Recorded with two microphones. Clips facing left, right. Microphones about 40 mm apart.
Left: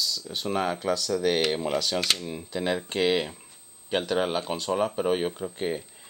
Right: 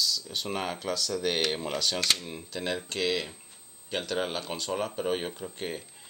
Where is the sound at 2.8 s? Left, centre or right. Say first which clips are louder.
Left 5 dB; left.